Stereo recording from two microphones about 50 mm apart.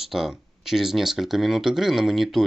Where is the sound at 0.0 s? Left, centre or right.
Centre.